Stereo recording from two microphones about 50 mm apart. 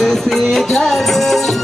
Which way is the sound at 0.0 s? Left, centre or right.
Centre.